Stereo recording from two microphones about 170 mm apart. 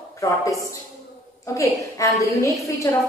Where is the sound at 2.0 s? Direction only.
15° left (ahead or behind).